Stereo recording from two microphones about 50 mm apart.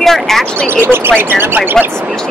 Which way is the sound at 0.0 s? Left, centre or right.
Centre.